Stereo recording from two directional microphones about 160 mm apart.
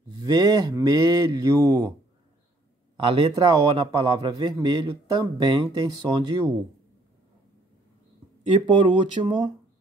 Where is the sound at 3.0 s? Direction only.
30° right (ahead or behind).